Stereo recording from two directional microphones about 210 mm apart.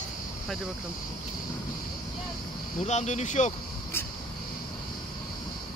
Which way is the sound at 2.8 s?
30° left (ahead or behind).